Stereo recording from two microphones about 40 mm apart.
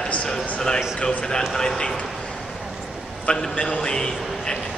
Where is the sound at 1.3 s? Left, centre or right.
Centre.